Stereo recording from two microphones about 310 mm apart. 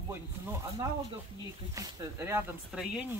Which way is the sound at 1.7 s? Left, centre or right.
Centre.